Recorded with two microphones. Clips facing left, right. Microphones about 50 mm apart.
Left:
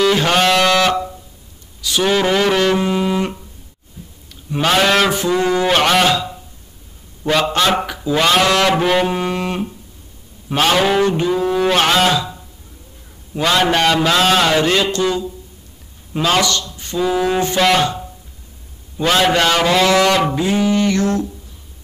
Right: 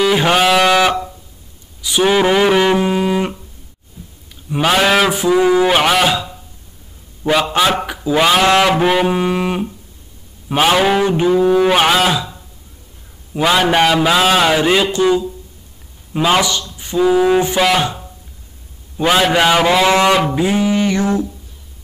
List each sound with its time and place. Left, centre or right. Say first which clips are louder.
0.0 s music: right 1 dB; centre
4.5 s a man's voice: right 1 dB; centre
7.8 s a man's voice: right 2 dB; centre
16.6 s a sound: right 5 dB; centre
18.9 s a man's voice: right 1 dB; centre
19.9 s a man's voice: right 1 dB; right